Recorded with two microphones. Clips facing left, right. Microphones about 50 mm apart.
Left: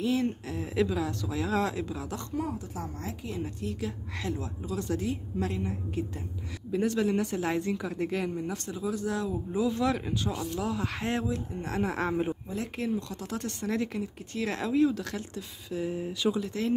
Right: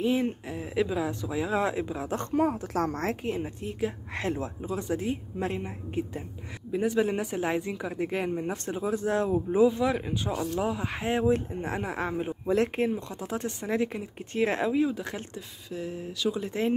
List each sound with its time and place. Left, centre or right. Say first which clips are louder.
0.0 s speech: right 2 dB; centre
2.0 s speech: right 7 dB; right
2.7 s speech: right 9 dB; right
3.4 s speech: right 3 dB; right
6.7 s speech: right 1 dB; centre
8.2 s speech: right 2 dB; right
9.7 s speech: right 2 dB; centre
12.7 s speech: right 3 dB; right
14.7 s speech: left 1 dB; centre
15.8 s speech: left 3 dB; centre
16.3 s speech: right 2 dB; right